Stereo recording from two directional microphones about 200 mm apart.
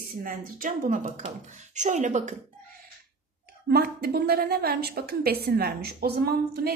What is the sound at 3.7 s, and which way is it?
A woman's voice, 50° right (ahead or behind).